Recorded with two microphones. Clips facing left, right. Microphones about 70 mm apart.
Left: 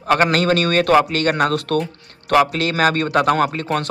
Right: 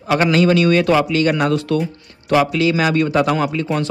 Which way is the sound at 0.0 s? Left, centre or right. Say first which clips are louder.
Right 1 dB; left.